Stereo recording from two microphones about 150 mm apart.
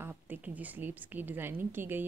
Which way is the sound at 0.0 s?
10° right (ahead or behind).